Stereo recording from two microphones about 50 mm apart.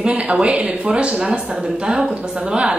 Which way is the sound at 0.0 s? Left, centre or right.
Right.